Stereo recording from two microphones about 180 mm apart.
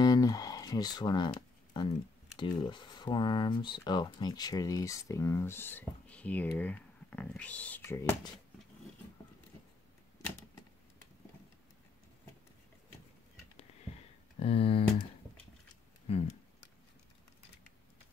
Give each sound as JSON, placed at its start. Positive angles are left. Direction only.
{"t": 0.0, "sound": "music", "side_deg": 20}
{"t": 2.3, "sound": "speech", "side_deg": 25}
{"t": 8.0, "sound": "speech", "side_deg": 20}
{"t": 14.4, "sound": "speech", "side_deg": 35}
{"t": 16.1, "sound": "speech", "side_deg": 35}